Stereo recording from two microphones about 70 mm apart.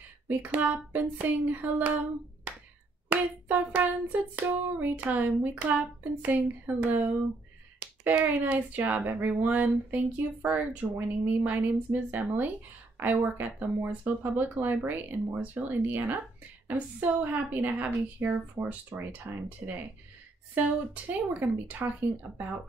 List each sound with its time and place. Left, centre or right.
0.3 s hands: right
2.5 s a sound: centre
3.1 s hands: right